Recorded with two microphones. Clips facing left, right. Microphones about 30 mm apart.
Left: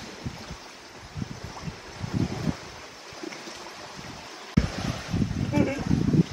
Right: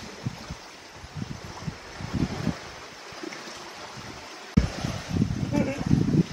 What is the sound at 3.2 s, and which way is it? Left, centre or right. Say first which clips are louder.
Stream: even; centre.